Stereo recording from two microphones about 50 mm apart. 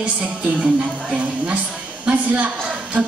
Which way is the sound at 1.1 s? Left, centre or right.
Right.